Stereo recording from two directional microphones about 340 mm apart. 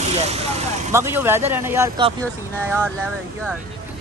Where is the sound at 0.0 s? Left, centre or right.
Centre.